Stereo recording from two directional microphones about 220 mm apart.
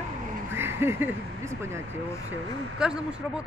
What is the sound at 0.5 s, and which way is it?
Speech, 10° right (ahead or behind).